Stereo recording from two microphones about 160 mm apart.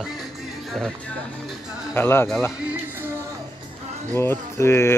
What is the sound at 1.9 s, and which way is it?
Speech, 15° left (ahead or behind).